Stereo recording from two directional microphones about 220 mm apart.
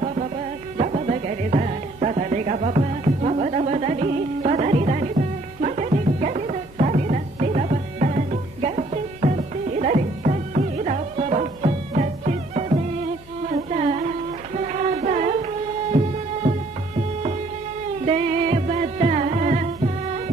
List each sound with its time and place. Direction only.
0.7 s music: 35° right (ahead or behind)
13.5 s carnatic music: 35° right (ahead or behind)
14.5 s music: 30° right (ahead or behind)
18.0 s music: 30° right (ahead or behind)